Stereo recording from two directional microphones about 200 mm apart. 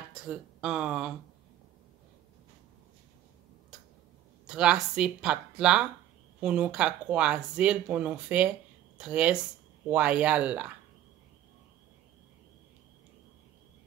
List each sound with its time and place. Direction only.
0.2 s speech: 5° right (ahead or behind)
4.5 s speech: 5° right (ahead or behind)